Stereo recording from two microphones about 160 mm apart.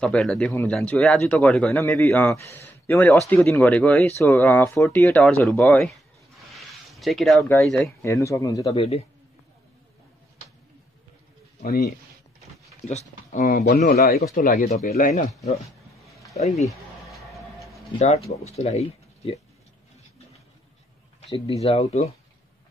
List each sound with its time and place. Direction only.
0.0 s a man's voice: 5° left (ahead or behind)
1.8 s a man's voice: 15° left (ahead or behind)
6.5 s a sound: centre (ahead or behind)
7.6 s speech: centre (ahead or behind)
8.0 s speech: 20° left (ahead or behind)
8.7 s speech: 40° left (ahead or behind)
11.6 s speech: 65° left (ahead or behind)
12.8 s speech: 45° left (ahead or behind)
13.6 s speech: 80° left; by 14.7 s 60° left (ahead or behind)
14.7 s speech: 45° left (ahead or behind)
16.3 s speech: 45° left (ahead or behind)
17.1 s music: centre (ahead or behind)
18.0 s speech: 40° left (ahead or behind)
21.2 s speech: 40° left (ahead or behind)